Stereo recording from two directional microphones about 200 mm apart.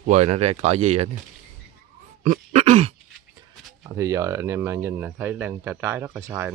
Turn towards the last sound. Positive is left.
turn(degrees=-15)  # may be behind; listen again after turning